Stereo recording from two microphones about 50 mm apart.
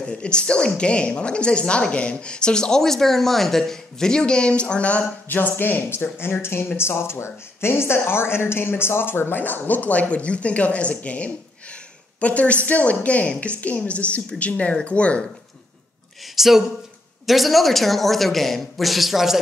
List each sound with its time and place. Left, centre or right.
0.0 s a woman's voice: centre
5.3 s a woman's voice: left
16.3 s a man's voice: centre